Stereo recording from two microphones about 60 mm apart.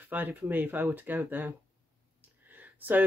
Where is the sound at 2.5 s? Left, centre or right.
Right.